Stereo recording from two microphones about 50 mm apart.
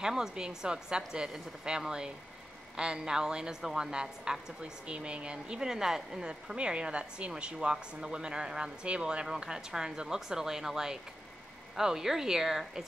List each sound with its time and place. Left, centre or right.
0.0 s speech: centre